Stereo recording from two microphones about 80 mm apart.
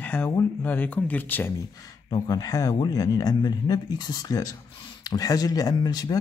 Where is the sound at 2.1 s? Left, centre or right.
Left.